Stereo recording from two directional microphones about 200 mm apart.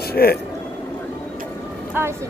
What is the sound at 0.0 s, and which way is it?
Music, 50° left (ahead or behind).